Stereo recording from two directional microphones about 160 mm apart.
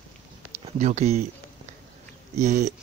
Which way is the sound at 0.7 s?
45° right (ahead or behind).